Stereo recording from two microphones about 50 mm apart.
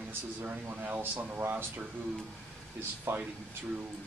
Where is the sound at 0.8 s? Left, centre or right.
Right.